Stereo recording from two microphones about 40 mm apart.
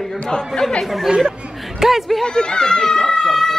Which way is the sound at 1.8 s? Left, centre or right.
Centre.